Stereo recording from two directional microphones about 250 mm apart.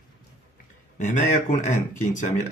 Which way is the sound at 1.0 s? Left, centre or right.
Left.